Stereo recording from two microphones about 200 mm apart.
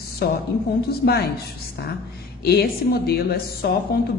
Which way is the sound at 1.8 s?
55° left (ahead or behind).